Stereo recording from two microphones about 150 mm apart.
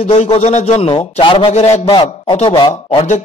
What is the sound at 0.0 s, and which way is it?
A man's voice, 45° left (ahead or behind).